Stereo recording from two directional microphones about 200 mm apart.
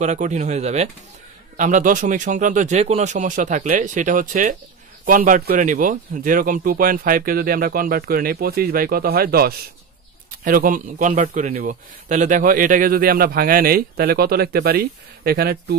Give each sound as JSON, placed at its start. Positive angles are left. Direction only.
{"t": 0.0, "sound": "a man's voice", "side_deg": -35}